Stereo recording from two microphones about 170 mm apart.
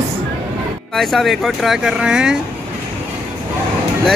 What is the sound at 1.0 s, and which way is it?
Speech, centre (ahead or behind).